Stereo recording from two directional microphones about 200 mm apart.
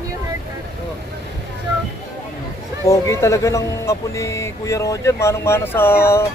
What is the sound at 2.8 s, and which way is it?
Speech, 15° left (ahead or behind).